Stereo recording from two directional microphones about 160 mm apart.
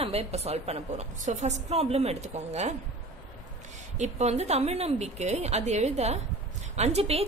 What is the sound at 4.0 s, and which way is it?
A woman's voice, 45° right (ahead or behind).